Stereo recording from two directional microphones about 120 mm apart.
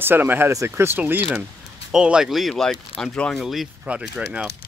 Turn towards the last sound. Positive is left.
turn(degrees=-10)  # may be behind; listen again after turning